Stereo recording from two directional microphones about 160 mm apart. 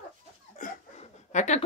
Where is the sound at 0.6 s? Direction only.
55° left (ahead or behind).